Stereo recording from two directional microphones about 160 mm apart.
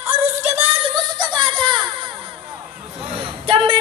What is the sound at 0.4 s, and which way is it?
Female singing, 40° right (ahead or behind).